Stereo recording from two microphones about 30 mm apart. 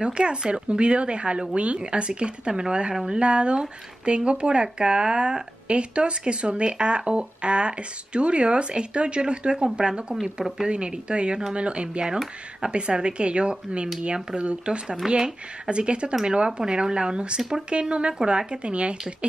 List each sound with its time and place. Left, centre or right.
0.0 s speech: right
15.0 s speech: right